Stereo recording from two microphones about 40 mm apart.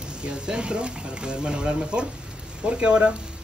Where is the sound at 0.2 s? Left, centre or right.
Right.